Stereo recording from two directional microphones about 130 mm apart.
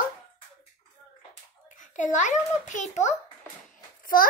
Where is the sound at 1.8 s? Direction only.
75° left (ahead or behind).